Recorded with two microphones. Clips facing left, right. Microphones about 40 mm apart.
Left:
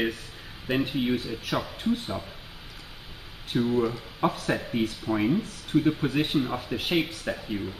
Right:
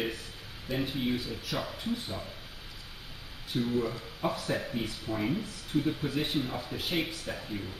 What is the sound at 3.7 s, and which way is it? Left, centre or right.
Speech, left.